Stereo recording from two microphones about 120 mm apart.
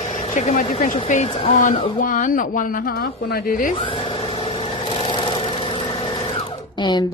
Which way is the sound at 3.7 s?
45° left (ahead or behind).